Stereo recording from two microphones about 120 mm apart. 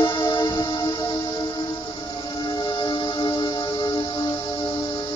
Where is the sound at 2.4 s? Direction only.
40° left (ahead or behind).